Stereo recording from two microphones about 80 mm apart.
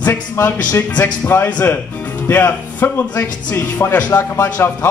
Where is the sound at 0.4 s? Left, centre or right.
Left.